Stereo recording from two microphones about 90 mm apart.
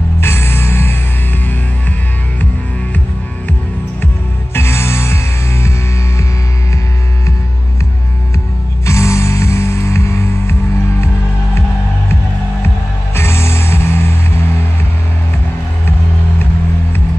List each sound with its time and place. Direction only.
0.2 s music: 25° left (ahead or behind)
4.6 s music: 25° left (ahead or behind)
8.8 s music: 30° left (ahead or behind)
13.1 s music: 30° left (ahead or behind)